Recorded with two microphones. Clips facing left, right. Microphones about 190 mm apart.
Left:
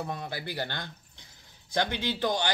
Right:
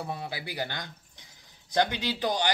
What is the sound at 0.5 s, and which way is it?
Speech, 15° right (ahead or behind).